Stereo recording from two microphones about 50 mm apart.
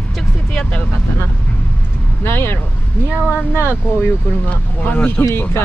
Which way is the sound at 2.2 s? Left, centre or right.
Left.